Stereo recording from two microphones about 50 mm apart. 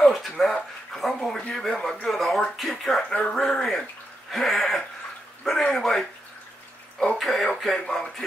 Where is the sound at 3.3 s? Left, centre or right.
Centre.